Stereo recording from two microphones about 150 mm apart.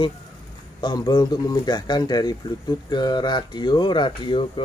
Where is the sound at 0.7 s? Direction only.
25° left (ahead or behind).